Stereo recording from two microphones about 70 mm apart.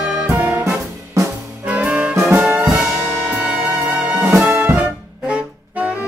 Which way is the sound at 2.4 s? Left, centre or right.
Centre.